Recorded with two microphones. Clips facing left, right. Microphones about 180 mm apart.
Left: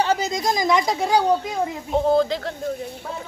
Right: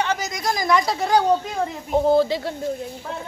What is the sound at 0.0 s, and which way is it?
A woman's voice, 30° left (ahead or behind).